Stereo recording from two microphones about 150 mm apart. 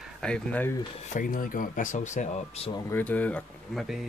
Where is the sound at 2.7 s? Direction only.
20° left (ahead or behind).